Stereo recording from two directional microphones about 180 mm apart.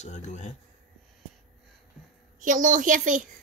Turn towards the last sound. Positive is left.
turn(degrees=-45)  # may be behind; listen again after turning